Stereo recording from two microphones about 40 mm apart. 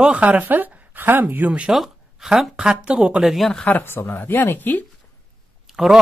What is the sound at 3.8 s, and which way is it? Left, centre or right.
Speech, left.